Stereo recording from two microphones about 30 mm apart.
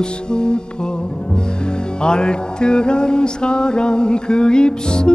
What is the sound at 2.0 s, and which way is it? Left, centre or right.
Mantra, left.